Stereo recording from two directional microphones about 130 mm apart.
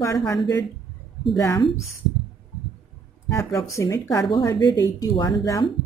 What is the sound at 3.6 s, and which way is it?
Speech, 25° left (ahead or behind).